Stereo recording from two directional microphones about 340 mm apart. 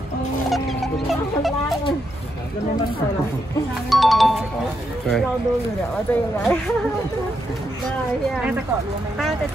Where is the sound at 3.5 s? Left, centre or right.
Centre.